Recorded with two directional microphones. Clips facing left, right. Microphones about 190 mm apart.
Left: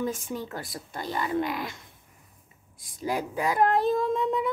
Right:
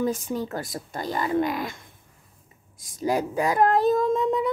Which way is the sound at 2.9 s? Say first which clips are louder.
Right 5 dB; 40° right (ahead or behind).